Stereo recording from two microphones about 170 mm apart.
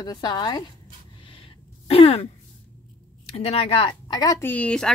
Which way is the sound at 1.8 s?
35° left (ahead or behind).